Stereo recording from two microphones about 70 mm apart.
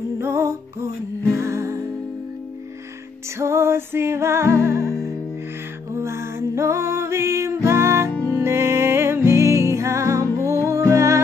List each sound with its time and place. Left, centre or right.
0.2 s music: right
3.3 s music: right